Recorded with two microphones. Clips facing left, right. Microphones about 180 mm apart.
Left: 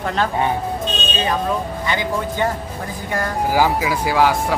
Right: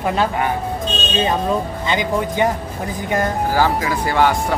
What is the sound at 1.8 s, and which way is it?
Speech, 20° right (ahead or behind).